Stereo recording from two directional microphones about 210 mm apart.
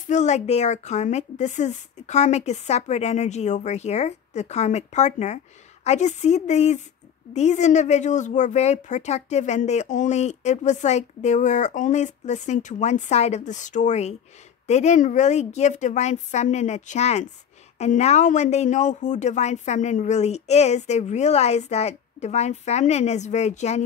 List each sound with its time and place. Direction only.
0.1 s speech: 35° left (ahead or behind)